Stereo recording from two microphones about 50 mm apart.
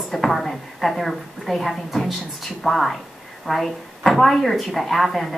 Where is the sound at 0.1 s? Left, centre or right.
Centre.